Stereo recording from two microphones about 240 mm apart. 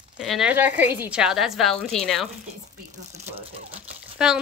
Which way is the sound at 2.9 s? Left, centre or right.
Right.